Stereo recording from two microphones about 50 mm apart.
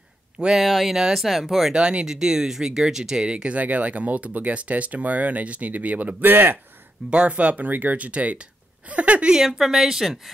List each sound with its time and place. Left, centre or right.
0.4 s speech: centre
1.7 s speech: centre
3.5 s speech: right
7.1 s speech: right
9.4 s speech: centre